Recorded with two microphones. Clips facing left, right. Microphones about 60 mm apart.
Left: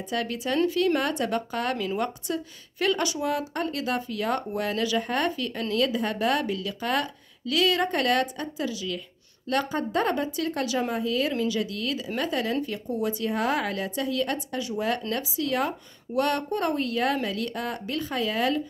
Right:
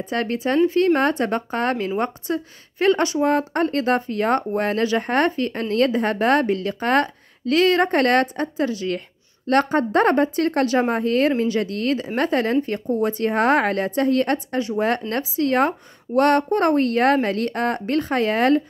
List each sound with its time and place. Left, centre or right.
0.0 s speech: right